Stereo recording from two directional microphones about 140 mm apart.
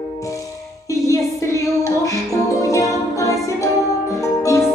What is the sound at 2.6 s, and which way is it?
Music, 25° left (ahead or behind).